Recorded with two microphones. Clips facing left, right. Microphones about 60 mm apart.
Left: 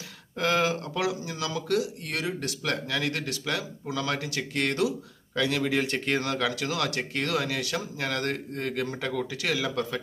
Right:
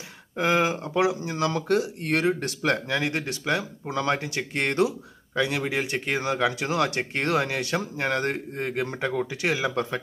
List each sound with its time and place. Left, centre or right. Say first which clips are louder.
0.4 s speech: right 2 dB; right